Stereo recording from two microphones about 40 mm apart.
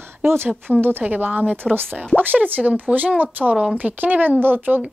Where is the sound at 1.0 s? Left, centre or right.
Right.